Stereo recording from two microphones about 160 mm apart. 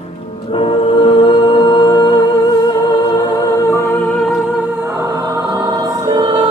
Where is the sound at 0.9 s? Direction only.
30° left (ahead or behind).